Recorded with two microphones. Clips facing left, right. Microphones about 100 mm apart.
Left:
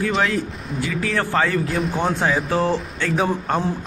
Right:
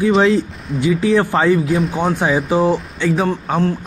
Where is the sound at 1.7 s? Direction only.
Centre (ahead or behind).